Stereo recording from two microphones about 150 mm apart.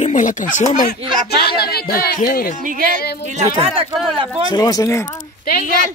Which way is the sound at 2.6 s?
65° right (ahead or behind).